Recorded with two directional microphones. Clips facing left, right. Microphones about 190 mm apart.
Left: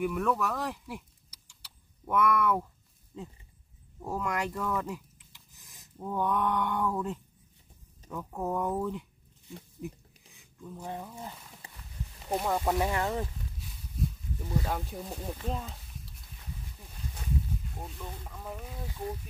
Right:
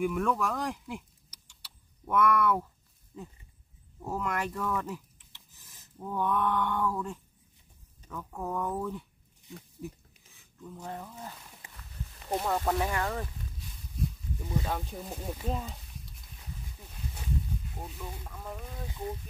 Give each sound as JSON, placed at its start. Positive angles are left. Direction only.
{"t": 0.0, "sound": "speech", "side_deg": 5}
{"t": 4.0, "sound": "speech", "side_deg": 10}
{"t": 5.6, "sound": "a sound", "side_deg": 15}
{"t": 8.1, "sound": "speech", "side_deg": 15}
{"t": 10.6, "sound": "speech", "side_deg": 10}
{"t": 13.9, "sound": "speech", "side_deg": 0}
{"t": 17.1, "sound": "a sound", "side_deg": 0}
{"t": 18.2, "sound": "speech", "side_deg": 5}